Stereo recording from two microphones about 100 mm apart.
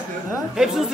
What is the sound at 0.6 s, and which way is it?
Speech, 5° right (ahead or behind).